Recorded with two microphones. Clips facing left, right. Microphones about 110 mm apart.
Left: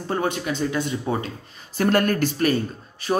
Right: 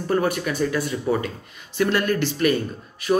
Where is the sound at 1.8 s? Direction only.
45° left (ahead or behind).